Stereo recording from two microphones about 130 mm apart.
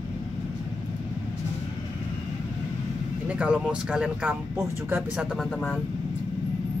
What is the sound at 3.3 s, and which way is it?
Speech, 10° right (ahead or behind).